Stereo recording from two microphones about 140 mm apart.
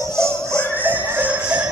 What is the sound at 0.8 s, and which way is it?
Music, 10° right (ahead or behind).